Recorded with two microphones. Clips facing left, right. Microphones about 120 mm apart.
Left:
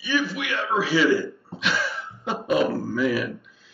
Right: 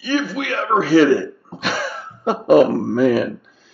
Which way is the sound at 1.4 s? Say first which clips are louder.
Right 3 dB; 45° right (ahead or behind).